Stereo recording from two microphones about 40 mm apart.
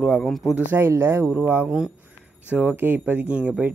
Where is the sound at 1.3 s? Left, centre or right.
Right.